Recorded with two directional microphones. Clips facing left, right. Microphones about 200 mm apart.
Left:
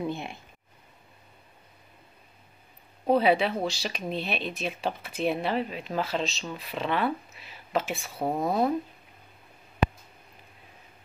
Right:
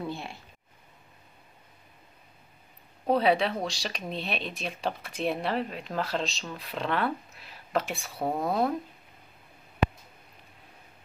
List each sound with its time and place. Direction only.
0.0 s speech: 20° left (ahead or behind)
3.1 s speech: 5° left (ahead or behind)